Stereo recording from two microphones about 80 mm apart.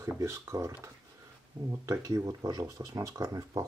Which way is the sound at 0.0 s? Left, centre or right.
Right.